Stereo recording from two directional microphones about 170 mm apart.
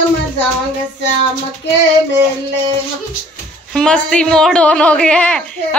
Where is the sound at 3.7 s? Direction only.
5° left (ahead or behind).